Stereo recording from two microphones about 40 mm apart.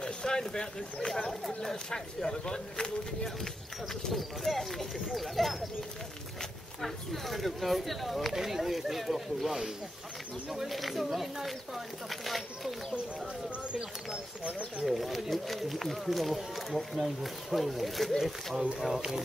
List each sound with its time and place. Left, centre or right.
0.0 s speech: centre
4.1 s speech: centre
6.8 s speech: centre
10.7 s speech: centre
14.8 s speech: centre
18.9 s speech: centre